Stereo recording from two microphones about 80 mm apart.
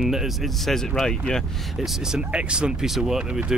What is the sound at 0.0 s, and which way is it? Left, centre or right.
Speech, centre.